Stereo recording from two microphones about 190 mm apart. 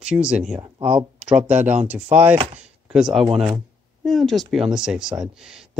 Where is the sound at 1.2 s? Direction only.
5° right (ahead or behind).